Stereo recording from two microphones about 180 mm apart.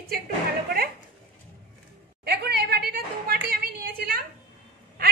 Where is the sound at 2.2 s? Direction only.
65° right (ahead or behind).